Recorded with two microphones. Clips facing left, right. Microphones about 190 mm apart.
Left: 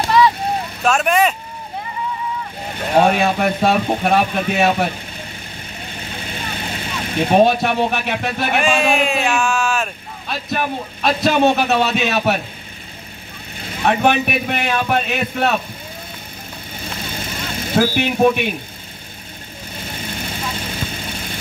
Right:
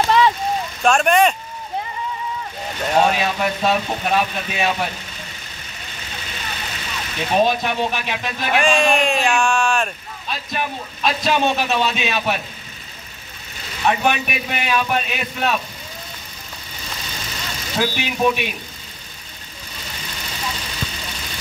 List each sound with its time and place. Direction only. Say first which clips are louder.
0.8 s speech: right 1 dB; 5° left (ahead or behind)
2.9 s a man's voice: left 3 dB; 55° left (ahead or behind)
5.9 s vehicle: left 4 dB; 55° left (ahead or behind)
8.5 s speech: right 1 dB; 5° left (ahead or behind)
10.2 s a man's voice: left 4 dB; 50° left (ahead or behind)
13.6 s a man's voice: left 3 dB; 55° left (ahead or behind)
16.7 s vehicle: left 5 dB; 55° left (ahead or behind)
18.2 s a man's voice: left 4 dB; 55° left (ahead or behind)
19.7 s vehicle: left 6 dB; 55° left (ahead or behind)